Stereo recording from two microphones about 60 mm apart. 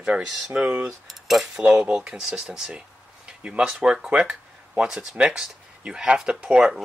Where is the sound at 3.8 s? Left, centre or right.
Centre.